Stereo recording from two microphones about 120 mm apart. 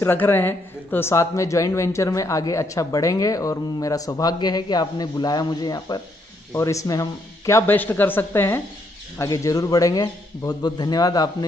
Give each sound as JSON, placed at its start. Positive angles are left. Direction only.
{"t": 0.0, "sound": "a man's voice", "side_deg": 20}